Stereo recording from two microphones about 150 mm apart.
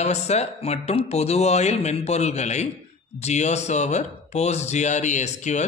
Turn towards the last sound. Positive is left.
turn(degrees=50)  # may be behind; listen again after turning